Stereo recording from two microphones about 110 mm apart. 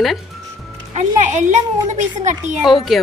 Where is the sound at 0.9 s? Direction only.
90° right.